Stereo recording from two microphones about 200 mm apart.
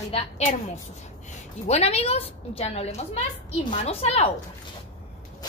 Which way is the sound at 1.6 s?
30° left (ahead or behind).